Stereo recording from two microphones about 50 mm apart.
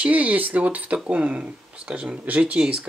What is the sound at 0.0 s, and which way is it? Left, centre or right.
Speech, right.